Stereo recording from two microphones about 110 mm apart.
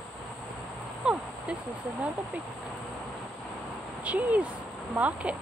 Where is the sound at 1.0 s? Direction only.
5° right (ahead or behind).